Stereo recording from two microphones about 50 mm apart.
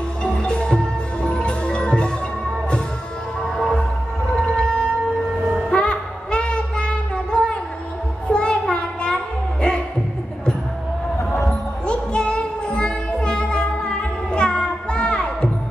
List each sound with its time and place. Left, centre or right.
0.2 s music: centre
3.5 s music: centre
4.5 s whale vocalization: centre
5.7 s child singing: centre
11.8 s music: centre